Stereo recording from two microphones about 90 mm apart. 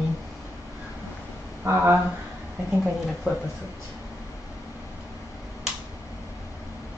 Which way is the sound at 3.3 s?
5° right (ahead or behind).